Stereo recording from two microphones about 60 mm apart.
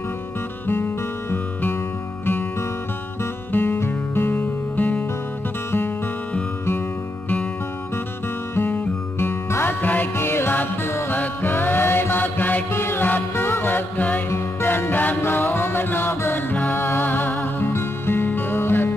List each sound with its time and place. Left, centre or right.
0.7 s music: left
3.5 s music: left
8.6 s music: left
10.1 s music: left
12.7 s music: left
14.3 s music: left